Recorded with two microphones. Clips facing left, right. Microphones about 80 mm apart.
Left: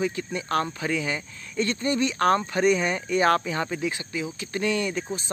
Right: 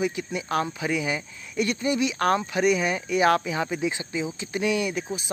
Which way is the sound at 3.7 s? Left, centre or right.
Right.